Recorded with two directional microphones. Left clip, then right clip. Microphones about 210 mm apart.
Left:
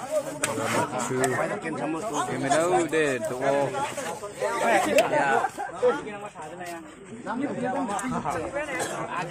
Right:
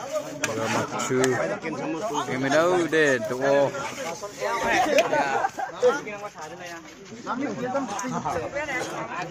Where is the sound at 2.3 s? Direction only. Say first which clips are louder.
Right 2 dB; 25° right (ahead or behind).